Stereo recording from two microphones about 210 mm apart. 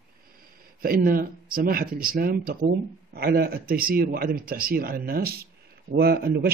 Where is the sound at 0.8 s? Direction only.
45° right (ahead or behind).